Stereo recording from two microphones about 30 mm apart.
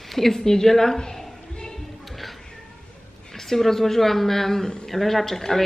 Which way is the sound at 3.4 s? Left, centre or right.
Centre.